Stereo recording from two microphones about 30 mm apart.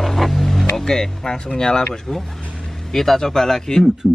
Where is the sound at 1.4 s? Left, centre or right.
Left.